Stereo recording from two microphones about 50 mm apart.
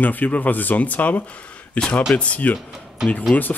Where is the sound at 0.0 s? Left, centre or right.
Left.